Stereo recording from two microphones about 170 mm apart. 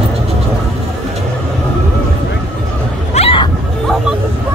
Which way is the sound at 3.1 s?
35° left (ahead or behind).